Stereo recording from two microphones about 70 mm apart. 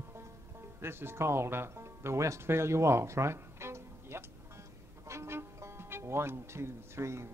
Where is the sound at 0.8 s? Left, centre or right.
Right.